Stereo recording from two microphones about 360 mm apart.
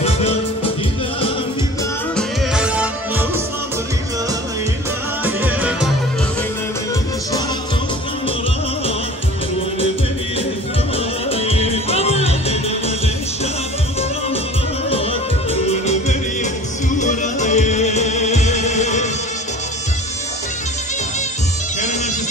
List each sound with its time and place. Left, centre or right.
0.0 s music: centre
2.1 s music: centre
5.2 s music: centre
11.2 s music: centre
15.5 s music: centre